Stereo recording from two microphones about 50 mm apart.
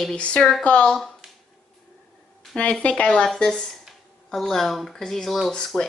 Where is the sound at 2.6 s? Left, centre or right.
Left.